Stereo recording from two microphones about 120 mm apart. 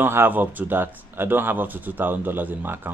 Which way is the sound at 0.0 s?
20° right (ahead or behind).